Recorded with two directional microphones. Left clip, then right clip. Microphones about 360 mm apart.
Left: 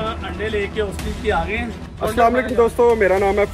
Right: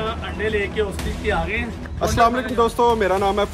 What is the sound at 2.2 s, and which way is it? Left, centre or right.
Speech, centre.